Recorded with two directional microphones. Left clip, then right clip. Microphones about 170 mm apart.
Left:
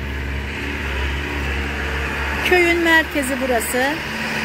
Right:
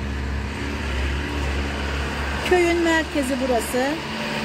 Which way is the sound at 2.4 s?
10° right (ahead or behind).